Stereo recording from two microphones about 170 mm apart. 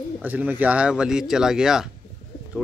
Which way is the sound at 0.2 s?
10° right (ahead or behind).